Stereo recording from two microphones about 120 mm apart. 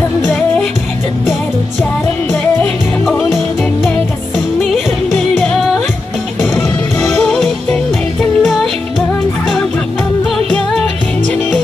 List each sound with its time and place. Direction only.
2.6 s music: 5° left (ahead or behind)
5.4 s music: 10° left (ahead or behind)